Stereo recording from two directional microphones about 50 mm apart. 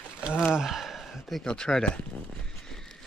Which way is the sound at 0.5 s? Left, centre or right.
Centre.